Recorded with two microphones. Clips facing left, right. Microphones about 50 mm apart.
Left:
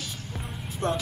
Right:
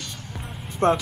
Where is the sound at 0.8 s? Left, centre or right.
Right.